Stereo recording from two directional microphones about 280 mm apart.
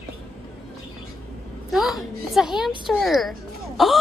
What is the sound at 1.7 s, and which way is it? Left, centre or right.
A woman's voice, centre.